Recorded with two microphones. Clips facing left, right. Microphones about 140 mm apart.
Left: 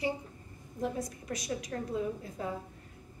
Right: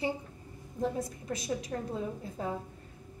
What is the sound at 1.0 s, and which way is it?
Speech, 30° right (ahead or behind).